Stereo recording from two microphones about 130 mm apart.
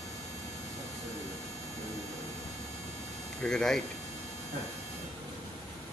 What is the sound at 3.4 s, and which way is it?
Speech, 5° left (ahead or behind).